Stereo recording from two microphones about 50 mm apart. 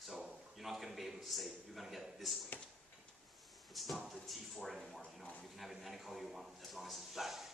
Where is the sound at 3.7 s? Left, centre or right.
Centre.